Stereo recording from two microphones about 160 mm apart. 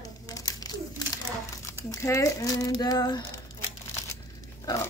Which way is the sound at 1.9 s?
20° left (ahead or behind).